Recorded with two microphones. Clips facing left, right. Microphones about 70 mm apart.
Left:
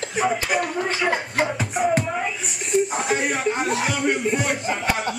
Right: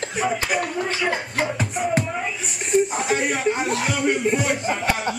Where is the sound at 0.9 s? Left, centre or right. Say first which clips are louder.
Left 1 dB; centre.